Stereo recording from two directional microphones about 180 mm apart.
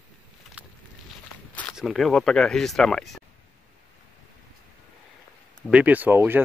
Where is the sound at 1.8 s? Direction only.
Centre (ahead or behind).